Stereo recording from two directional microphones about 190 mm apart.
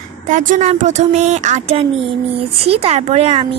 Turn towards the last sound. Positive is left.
turn(degrees=-30)  # may be behind; listen again after turning